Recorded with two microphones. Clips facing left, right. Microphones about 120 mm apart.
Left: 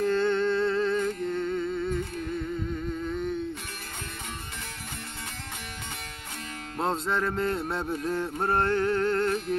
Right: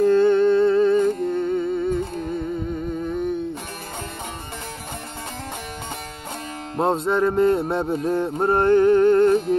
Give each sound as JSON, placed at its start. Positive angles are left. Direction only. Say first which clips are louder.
{"t": 0.0, "sound": "humming", "louder": "right 9 dB", "side_deg": -15}
{"t": 6.8, "sound": "music", "louder": "right 8 dB", "side_deg": -20}